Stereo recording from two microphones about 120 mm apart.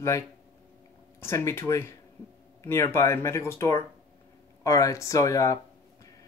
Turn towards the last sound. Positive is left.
turn(degrees=25)  # may be behind; listen again after turning